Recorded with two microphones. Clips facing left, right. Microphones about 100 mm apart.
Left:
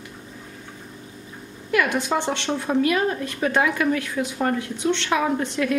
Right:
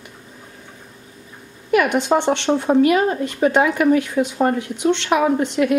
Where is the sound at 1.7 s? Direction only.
20° right (ahead or behind).